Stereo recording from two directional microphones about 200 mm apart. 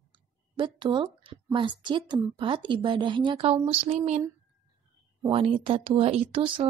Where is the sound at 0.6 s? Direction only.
25° right (ahead or behind).